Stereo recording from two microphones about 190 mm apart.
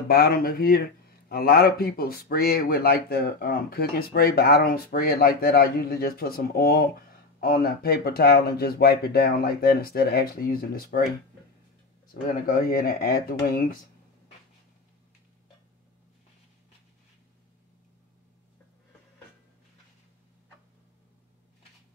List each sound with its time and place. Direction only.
0.1 s speech: 50° left (ahead or behind)
12.1 s speech: 45° left (ahead or behind)